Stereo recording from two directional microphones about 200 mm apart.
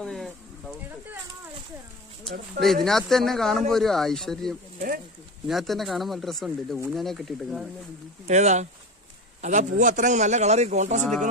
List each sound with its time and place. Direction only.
0.0 s a sound: centre (ahead or behind)
2.6 s speech: centre (ahead or behind)
8.3 s a man's voice: 35° right (ahead or behind)